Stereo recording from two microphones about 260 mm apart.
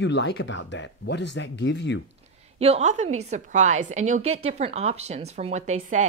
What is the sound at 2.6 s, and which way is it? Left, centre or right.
A woman's voice, right.